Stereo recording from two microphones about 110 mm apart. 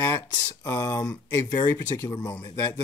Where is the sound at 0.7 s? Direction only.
30° left (ahead or behind).